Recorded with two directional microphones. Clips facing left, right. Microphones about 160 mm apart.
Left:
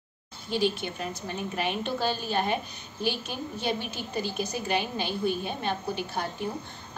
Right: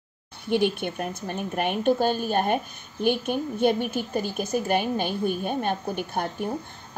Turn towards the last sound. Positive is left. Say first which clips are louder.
# right 3 dB
turn(degrees=-50)  # may be behind; listen again after turning